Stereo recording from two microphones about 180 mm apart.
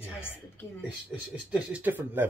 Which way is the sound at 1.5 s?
10° right (ahead or behind).